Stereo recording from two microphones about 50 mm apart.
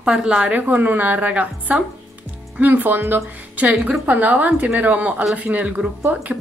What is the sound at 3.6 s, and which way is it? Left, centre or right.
A woman's voice, right.